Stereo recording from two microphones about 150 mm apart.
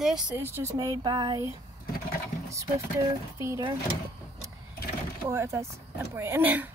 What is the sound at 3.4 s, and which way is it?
Speech, 20° right (ahead or behind).